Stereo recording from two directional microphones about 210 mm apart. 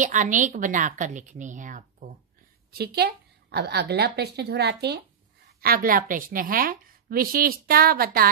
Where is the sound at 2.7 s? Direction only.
50° right (ahead or behind).